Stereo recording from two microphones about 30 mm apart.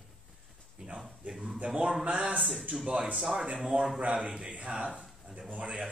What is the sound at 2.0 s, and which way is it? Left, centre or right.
Speech, right.